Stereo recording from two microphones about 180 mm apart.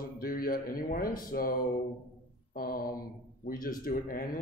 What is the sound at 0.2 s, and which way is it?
Speech, 50° left (ahead or behind).